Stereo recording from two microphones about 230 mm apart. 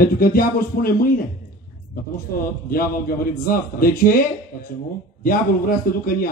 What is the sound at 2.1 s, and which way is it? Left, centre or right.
A man's voice, left.